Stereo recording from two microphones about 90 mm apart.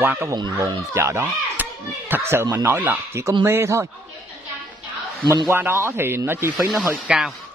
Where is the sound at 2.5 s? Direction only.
25° right (ahead or behind).